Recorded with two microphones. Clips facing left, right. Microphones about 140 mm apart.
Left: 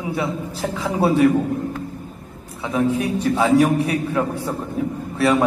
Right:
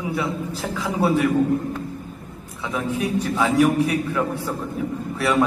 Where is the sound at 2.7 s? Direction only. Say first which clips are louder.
Left 4 dB; 30° left (ahead or behind).